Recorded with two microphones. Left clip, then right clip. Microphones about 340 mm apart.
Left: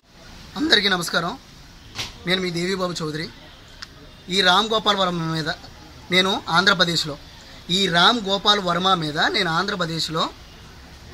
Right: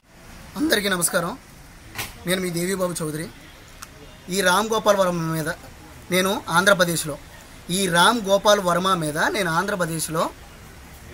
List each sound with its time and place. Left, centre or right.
0.6 s speech: centre